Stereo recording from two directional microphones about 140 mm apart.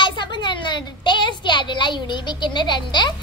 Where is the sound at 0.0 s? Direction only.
35° left (ahead or behind).